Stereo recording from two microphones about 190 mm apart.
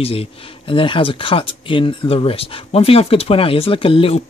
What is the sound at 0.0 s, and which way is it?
Speech, 30° left (ahead or behind).